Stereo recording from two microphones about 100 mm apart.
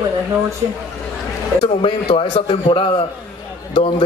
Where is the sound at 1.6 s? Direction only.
65° left (ahead or behind).